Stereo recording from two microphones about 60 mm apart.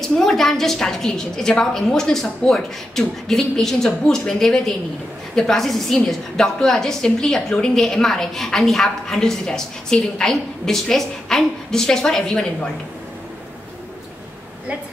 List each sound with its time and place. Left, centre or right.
0.0 s a woman's voice: centre